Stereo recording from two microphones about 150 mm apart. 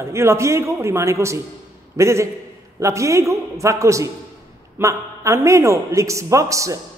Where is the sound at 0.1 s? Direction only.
20° right (ahead or behind).